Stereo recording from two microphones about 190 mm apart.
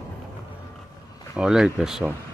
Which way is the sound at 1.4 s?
5° right (ahead or behind).